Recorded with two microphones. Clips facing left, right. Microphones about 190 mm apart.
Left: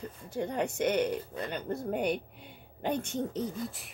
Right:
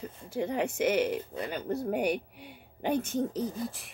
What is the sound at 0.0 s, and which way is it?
Speech, 5° right (ahead or behind).